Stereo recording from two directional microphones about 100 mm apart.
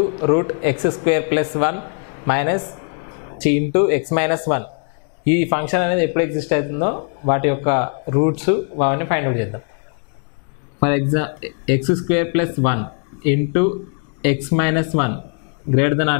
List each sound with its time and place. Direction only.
0.2 s speech: 15° left (ahead or behind)
10.8 s speech: 15° left (ahead or behind)